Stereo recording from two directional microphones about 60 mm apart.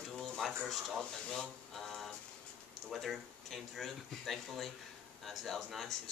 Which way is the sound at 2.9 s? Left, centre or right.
Centre.